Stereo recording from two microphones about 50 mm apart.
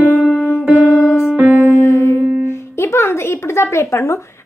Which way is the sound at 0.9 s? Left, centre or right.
Left.